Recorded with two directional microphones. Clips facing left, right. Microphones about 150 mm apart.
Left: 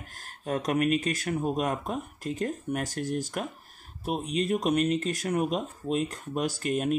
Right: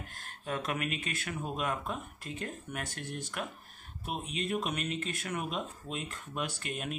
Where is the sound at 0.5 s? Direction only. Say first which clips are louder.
Left 9 dB; 40° left (ahead or behind).